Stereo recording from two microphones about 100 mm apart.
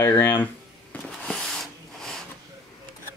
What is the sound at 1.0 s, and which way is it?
Rub, 5° left (ahead or behind).